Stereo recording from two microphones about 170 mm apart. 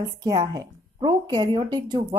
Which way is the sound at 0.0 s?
20° right (ahead or behind).